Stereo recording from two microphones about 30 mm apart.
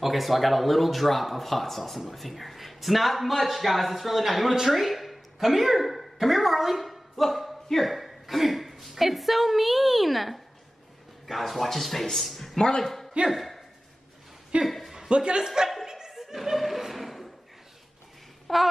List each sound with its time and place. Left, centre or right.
0.0 s a man's voice: centre
12.5 s speech: left
12.8 s a sound: centre
13.3 s speech: centre
14.5 s a man's voice: right
15.8 s laughter: centre
16.2 s music: centre
16.5 s a sound: centre
18.5 s a sound: centre